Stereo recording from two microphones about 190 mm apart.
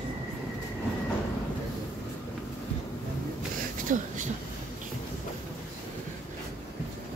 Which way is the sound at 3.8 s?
40° right (ahead or behind).